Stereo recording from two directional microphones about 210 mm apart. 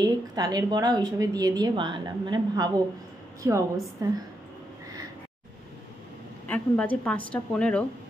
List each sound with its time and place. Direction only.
0.0 s a woman's voice: 15° right (ahead or behind)
6.4 s a woman's voice: 5° left (ahead or behind)